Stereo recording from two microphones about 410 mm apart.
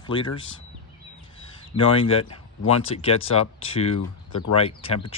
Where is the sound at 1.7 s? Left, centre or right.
Centre.